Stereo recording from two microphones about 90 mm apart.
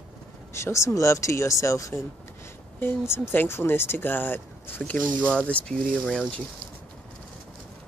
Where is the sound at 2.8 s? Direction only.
25° left (ahead or behind); by 6.4 s 5° left (ahead or behind).